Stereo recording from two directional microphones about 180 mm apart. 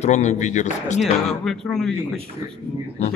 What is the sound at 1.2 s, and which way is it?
Speech, centre (ahead or behind).